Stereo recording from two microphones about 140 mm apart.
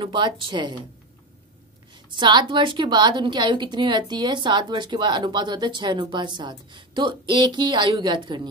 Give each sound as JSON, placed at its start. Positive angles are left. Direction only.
{"t": 0.0, "sound": "a woman's voice", "side_deg": -35}
{"t": 2.1, "sound": "a woman's voice", "side_deg": -35}